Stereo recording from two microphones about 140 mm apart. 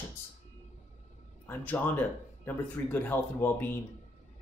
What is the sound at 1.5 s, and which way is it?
Speech, 15° left (ahead or behind).